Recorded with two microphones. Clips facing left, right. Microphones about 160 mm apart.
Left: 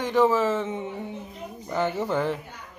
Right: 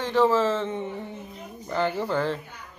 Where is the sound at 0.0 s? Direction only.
15° left (ahead or behind).